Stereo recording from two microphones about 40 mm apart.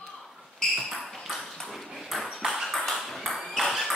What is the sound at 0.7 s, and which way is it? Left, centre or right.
Ping, centre.